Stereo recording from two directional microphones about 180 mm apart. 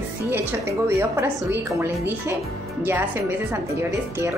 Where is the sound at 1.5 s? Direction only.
10° right (ahead or behind).